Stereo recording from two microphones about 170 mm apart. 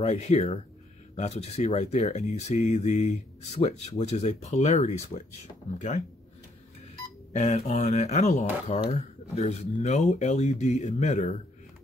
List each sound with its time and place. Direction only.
0.0 s speech: 40° left (ahead or behind)
7.3 s speech: 40° left (ahead or behind)